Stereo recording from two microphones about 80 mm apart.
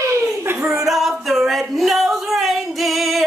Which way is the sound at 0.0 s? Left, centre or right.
Right.